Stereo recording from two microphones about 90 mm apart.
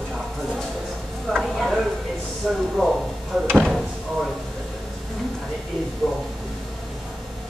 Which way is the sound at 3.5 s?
5° right (ahead or behind).